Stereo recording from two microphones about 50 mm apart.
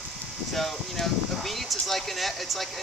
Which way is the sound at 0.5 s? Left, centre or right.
Centre.